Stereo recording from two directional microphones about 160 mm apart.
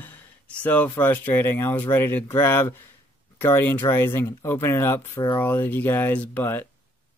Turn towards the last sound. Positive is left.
turn(degrees=15)  # may be behind; listen again after turning